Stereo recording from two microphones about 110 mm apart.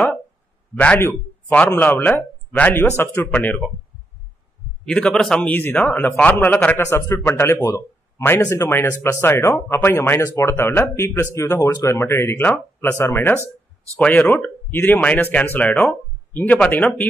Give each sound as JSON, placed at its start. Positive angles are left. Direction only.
{"t": 0.7, "sound": "a man's voice", "side_deg": 15}
{"t": 3.3, "sound": "speech", "side_deg": 15}
{"t": 4.8, "sound": "a man's voice", "side_deg": 10}